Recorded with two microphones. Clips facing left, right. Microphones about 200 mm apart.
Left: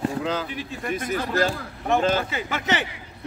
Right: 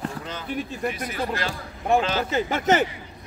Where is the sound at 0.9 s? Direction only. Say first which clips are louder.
Left 4 dB; 45° left (ahead or behind).